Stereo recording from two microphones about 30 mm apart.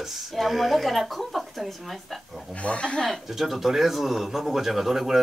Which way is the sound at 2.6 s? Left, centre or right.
Left.